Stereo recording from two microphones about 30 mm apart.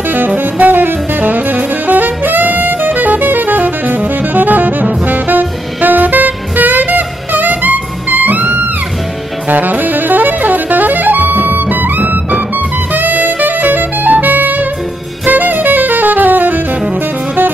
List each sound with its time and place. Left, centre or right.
0.4 s saxophone: right
9.5 s saxophone: right
12.9 s saxophone: right